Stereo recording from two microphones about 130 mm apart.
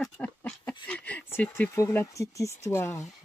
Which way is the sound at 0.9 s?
10° left (ahead or behind).